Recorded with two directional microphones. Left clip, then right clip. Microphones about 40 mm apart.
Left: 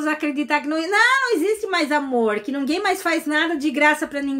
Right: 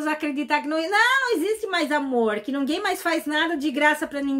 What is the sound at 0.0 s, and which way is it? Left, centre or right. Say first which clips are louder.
A woman's voice: left 3 dB; centre.